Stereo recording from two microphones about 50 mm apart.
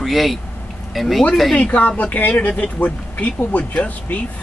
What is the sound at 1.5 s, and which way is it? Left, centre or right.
Speech, left.